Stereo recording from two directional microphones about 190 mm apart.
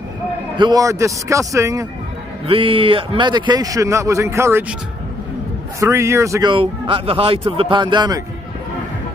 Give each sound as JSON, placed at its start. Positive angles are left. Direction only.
{"t": 0.6, "sound": "a man's voice", "side_deg": -20}
{"t": 2.4, "sound": "a man's voice", "side_deg": -30}
{"t": 5.8, "sound": "a man's voice", "side_deg": -15}
{"t": 6.5, "sound": "a man's voice", "side_deg": -30}